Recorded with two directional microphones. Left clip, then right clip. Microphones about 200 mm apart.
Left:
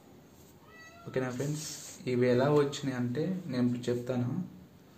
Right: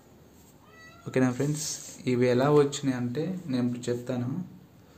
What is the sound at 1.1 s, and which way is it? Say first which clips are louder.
A man's voice: right 7 dB; 45° right (ahead or behind).